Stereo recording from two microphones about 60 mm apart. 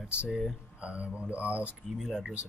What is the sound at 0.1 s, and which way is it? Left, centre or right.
Speech, centre.